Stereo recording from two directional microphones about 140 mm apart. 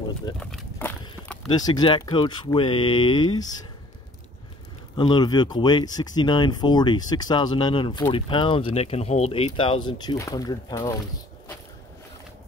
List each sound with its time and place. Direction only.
0.4 s a sound: 5° left (ahead or behind)
1.5 s speech: 30° left (ahead or behind)
4.9 s speech: 30° left (ahead or behind)